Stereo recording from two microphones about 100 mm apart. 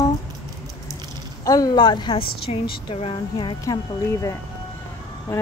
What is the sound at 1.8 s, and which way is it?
A woman's voice, 50° left (ahead or behind).